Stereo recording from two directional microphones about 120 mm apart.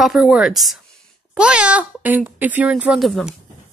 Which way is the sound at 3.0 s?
Centre (ahead or behind).